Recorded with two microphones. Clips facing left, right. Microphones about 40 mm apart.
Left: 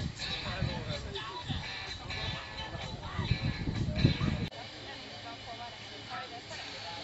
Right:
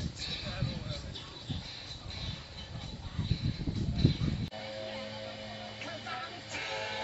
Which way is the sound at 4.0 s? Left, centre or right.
Left.